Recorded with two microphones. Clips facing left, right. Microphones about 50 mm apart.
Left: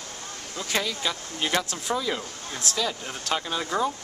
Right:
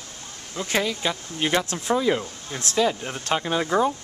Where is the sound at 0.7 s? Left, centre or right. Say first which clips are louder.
Right 3 dB; centre.